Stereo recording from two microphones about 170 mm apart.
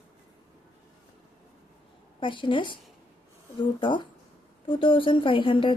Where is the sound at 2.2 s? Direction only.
30° left (ahead or behind).